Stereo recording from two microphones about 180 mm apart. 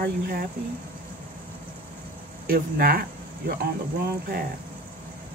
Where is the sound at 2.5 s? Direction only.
55° right (ahead or behind).